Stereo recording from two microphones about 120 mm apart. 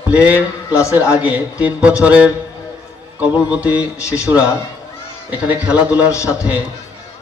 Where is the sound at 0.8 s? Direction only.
25° left (ahead or behind).